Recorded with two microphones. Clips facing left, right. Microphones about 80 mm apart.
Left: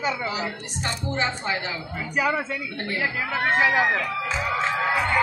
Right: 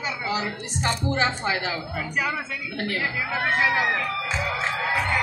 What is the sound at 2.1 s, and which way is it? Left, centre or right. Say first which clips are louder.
Speech: left 4 dB; centre.